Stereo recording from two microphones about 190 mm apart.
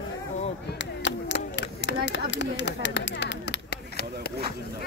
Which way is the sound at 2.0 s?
70° left (ahead or behind).